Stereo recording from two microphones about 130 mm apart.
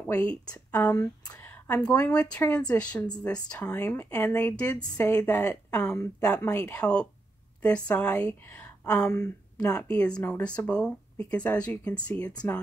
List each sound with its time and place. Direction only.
0.0 s speech: 10° left (ahead or behind)
1.4 s a sound: 10° left (ahead or behind)
2.3 s a woman's voice: 10° left (ahead or behind)